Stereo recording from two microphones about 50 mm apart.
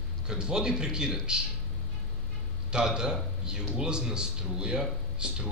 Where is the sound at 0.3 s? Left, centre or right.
Centre.